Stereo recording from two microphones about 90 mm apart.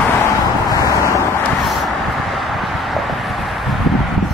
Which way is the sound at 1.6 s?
Centre (ahead or behind).